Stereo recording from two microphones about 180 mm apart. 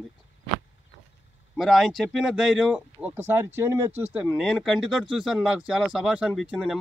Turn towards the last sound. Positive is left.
turn(degrees=-5)  # may be behind; listen again after turning